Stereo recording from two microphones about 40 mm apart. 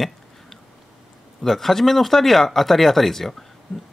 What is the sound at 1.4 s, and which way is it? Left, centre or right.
Speech, centre.